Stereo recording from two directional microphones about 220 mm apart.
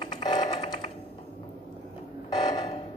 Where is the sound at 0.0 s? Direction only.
20° left (ahead or behind).